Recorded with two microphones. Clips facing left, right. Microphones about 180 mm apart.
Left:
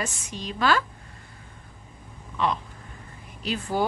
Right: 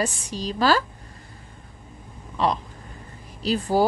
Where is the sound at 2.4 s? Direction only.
35° right (ahead or behind).